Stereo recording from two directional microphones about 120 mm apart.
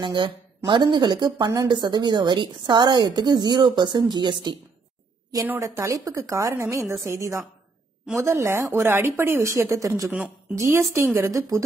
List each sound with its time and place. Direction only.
0.0 s a woman's voice: 40° right (ahead or behind)
5.6 s a woman's voice: 25° right (ahead or behind)